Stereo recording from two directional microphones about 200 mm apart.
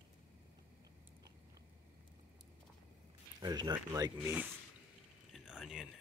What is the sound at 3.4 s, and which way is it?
Speech, 20° right (ahead or behind).